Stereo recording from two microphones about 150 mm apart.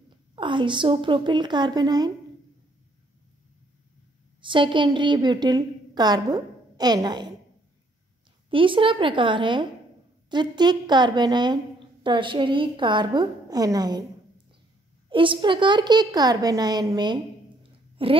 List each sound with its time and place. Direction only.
0.4 s a woman's voice: 30° right (ahead or behind)
4.4 s a woman's voice: 35° right (ahead or behind)
8.5 s a woman's voice: 35° right (ahead or behind)
15.0 s a woman's voice: 35° right (ahead or behind)